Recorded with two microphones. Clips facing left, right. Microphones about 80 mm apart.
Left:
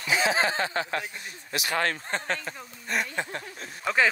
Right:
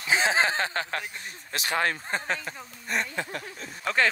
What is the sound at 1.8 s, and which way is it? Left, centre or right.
Speech, centre.